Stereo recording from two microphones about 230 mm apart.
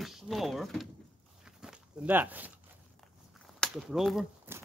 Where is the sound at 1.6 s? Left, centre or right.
Centre.